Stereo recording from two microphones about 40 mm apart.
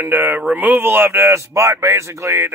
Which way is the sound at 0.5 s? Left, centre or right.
Right.